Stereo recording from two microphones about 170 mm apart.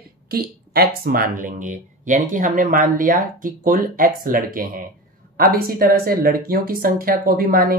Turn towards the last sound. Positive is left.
turn(degrees=-60)  # may be behind; listen again after turning